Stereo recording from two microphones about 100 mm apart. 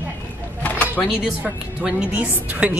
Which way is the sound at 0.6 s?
15° left (ahead or behind).